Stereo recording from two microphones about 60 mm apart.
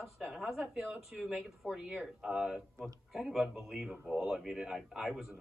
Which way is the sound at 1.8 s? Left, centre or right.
Right.